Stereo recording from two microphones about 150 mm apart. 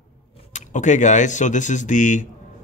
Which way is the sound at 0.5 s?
55° left (ahead or behind).